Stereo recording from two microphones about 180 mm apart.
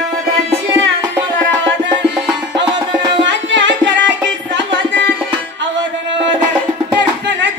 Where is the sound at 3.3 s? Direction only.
90° right.